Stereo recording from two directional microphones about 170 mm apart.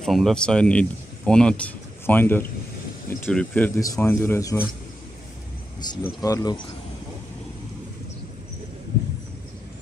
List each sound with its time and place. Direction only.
0.0 s speech: centre (ahead or behind)
5.8 s speech: 20° left (ahead or behind)